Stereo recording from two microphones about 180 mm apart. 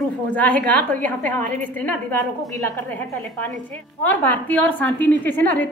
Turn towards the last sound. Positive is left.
turn(degrees=10)  # may be behind; listen again after turning